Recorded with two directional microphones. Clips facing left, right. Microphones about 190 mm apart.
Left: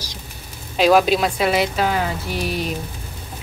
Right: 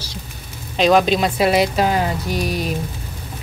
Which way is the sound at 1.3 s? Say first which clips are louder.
Right 3 dB; 35° right (ahead or behind).